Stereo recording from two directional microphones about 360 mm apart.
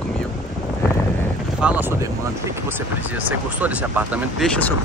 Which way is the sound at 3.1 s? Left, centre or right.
Centre.